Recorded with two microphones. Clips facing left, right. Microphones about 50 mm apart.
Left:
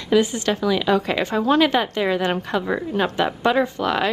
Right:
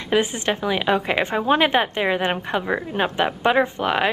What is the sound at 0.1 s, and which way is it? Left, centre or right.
A woman's voice, right.